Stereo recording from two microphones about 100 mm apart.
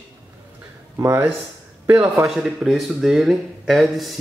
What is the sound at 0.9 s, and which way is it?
Speech, 30° right (ahead or behind).